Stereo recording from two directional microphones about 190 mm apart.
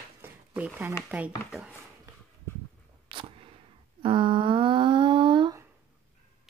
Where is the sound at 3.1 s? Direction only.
30° right (ahead or behind).